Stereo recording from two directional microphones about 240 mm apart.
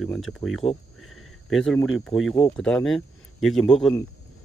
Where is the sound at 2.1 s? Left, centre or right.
Left.